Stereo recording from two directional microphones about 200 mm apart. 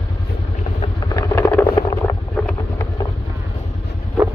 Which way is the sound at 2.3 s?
5° left (ahead or behind).